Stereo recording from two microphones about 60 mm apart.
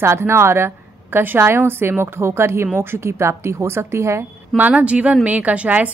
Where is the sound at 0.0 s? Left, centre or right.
Right.